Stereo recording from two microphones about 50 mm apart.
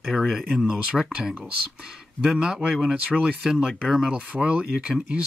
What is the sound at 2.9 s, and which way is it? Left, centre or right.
Speech, right.